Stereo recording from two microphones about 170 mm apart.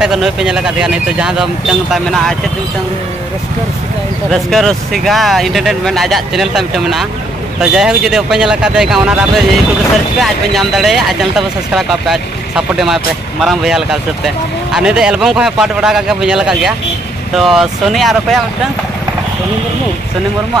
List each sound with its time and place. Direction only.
0.0 s speech: 5° right (ahead or behind)
4.3 s speech: centre (ahead or behind)